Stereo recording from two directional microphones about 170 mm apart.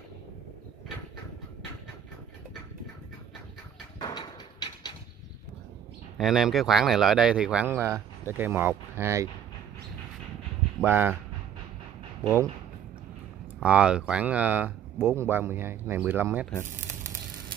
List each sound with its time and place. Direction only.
4.0 s a sound: 25° left (ahead or behind)
6.1 s speech: centre (ahead or behind)
10.8 s speech: 10° right (ahead or behind)
13.6 s speech: 5° right (ahead or behind)